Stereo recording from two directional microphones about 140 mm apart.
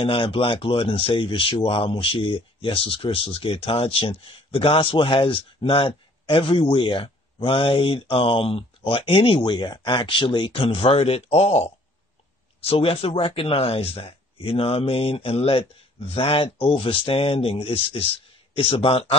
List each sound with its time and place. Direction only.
0.0 s a man's voice: 40° left (ahead or behind)